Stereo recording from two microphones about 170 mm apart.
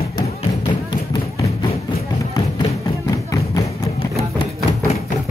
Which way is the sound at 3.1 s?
20° left (ahead or behind).